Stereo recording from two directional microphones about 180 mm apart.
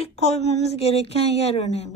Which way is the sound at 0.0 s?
35° left (ahead or behind).